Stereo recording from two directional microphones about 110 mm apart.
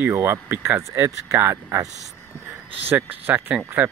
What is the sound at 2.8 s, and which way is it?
Speech, 15° right (ahead or behind).